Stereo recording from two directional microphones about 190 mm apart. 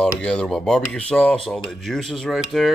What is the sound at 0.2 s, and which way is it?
Speech, 5° left (ahead or behind).